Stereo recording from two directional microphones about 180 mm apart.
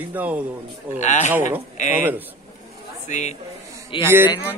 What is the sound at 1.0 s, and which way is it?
Speech, 40° left (ahead or behind).